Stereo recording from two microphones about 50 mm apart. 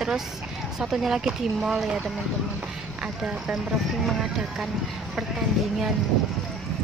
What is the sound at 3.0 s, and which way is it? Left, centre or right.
Speech, centre.